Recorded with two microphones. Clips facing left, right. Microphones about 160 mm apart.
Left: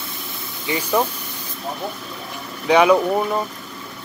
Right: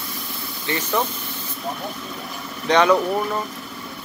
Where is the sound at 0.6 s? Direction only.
15° left (ahead or behind).